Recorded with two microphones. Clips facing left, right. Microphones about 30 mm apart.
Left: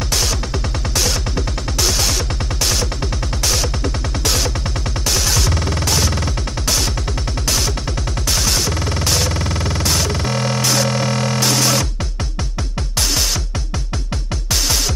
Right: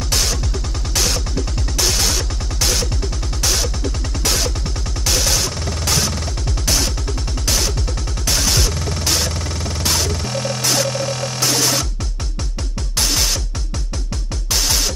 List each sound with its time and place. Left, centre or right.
0.1 s music: centre
1.8 s music: centre
4.2 s music: centre
5.5 s music: left
5.9 s music: centre
7.4 s music: centre
9.3 s music: left
10.6 s music: centre
10.9 s music: left
11.3 s music: centre
12.9 s music: centre
14.5 s music: centre